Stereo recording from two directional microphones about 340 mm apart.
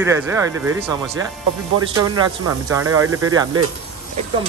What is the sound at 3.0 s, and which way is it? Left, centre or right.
Speech, right.